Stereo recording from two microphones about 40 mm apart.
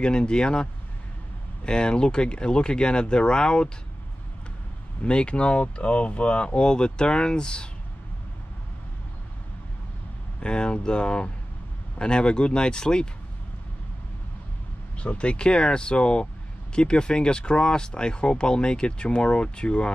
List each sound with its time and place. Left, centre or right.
0.0 s speech: left
5.0 s speech: left
10.4 s speech: left
15.0 s speech: left